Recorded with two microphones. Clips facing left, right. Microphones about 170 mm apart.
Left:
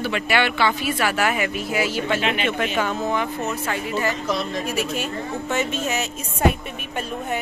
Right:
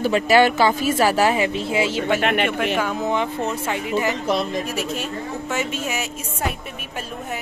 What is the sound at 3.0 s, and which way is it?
Speech, 20° right (ahead or behind).